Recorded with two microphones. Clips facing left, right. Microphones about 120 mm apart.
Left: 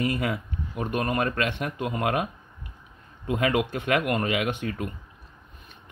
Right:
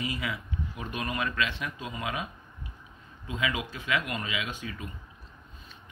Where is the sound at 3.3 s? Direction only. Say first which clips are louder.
Left 8 dB; 60° left (ahead or behind).